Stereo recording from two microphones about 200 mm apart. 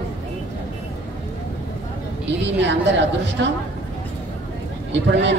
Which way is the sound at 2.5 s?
65° right (ahead or behind).